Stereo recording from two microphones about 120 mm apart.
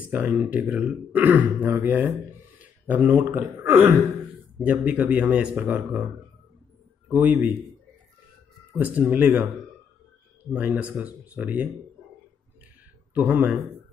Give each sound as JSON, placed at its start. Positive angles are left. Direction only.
{"t": 0.1, "sound": "speech", "side_deg": -10}
{"t": 2.6, "sound": "a sound", "side_deg": -15}
{"t": 3.6, "sound": "speech", "side_deg": -15}
{"t": 7.1, "sound": "speech", "side_deg": -15}
{"t": 8.7, "sound": "speech", "side_deg": -15}
{"t": 10.5, "sound": "speech", "side_deg": -10}
{"t": 13.1, "sound": "speech", "side_deg": -15}